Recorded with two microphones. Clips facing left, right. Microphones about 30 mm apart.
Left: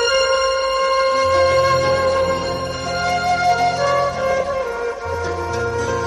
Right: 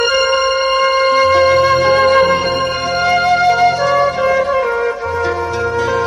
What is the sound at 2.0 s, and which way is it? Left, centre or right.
Music, right.